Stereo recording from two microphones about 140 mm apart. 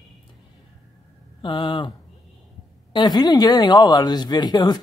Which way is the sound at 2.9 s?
30° left (ahead or behind).